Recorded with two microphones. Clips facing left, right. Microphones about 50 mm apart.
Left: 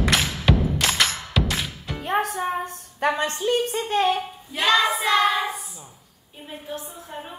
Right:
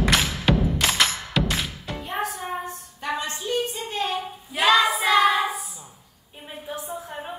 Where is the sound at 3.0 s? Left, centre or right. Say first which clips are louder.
Left 6 dB; left.